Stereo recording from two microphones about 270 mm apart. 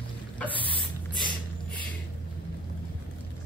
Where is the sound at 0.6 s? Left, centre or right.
Centre.